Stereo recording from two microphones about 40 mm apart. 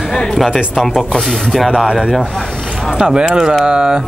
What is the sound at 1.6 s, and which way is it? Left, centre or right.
Speech, centre.